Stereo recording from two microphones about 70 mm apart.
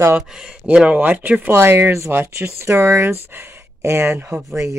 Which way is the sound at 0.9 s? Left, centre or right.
Right.